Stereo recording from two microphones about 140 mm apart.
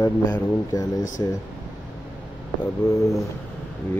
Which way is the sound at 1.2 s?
25° left (ahead or behind).